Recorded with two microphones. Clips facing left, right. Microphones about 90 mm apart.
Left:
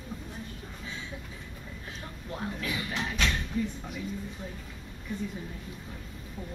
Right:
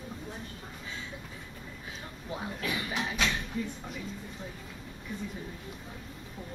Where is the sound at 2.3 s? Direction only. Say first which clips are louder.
Even; 5° right (ahead or behind).